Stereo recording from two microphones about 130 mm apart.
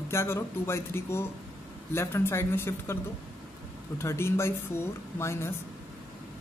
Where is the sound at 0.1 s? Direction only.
20° left (ahead or behind).